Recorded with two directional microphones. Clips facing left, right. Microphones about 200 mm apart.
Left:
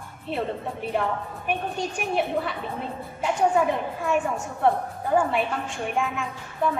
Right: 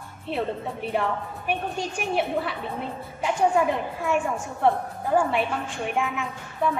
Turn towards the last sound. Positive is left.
turn(degrees=0)  # may be behind; listen again after turning